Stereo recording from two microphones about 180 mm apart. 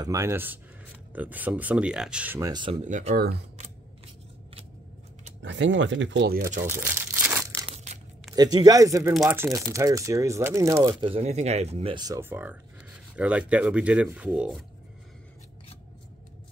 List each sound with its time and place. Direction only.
0.0 s speech: 15° right (ahead or behind)
2.5 s speech: 30° right (ahead or behind)
2.8 s speech: 40° right (ahead or behind)
5.4 s speech: 90° right; by 6.6 s 55° right (ahead or behind)
6.6 s crumpling: 10° right (ahead or behind)
7.7 s crumpling: 40° right (ahead or behind)
8.4 s speech: 20° right (ahead or behind)
9.1 s speech: centre (ahead or behind)
9.4 s speech: 15° right (ahead or behind)
11.0 s speech: 30° right (ahead or behind); by 14.6 s 5° right (ahead or behind)